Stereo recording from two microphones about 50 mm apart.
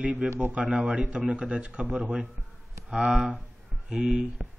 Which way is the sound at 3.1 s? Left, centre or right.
Centre.